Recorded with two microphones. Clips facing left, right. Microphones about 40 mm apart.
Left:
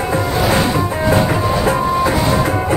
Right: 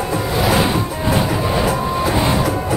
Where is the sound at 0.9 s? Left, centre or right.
Left.